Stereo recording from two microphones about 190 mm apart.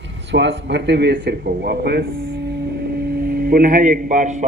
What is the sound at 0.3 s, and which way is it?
A man's voice, 65° right (ahead or behind).